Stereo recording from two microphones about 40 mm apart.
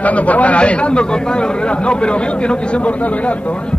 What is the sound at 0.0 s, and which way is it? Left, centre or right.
Speech, left.